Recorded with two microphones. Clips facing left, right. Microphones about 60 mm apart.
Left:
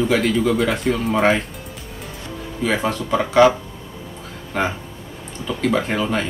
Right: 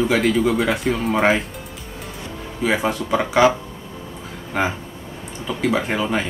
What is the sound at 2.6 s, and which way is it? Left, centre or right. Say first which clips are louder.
Speech: right 1 dB; centre.